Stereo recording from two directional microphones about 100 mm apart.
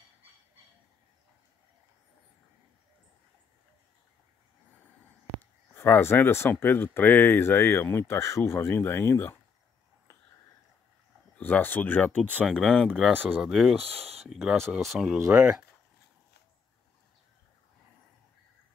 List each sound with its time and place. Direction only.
5.4 s speech: 20° left (ahead or behind)
11.3 s speech: 15° left (ahead or behind); by 15.6 s 10° right (ahead or behind)